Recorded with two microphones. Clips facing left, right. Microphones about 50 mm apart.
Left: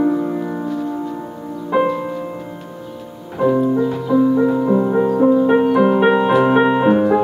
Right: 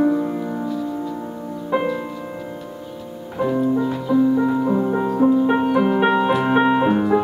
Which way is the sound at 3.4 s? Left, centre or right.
Centre.